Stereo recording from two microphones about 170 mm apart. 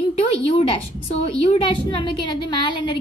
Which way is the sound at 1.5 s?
30° left (ahead or behind).